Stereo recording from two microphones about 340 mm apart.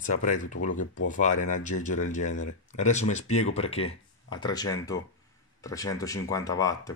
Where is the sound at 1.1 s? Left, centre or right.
Left.